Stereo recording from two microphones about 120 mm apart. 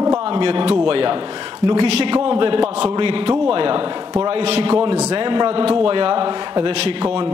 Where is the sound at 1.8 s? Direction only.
55° right (ahead or behind).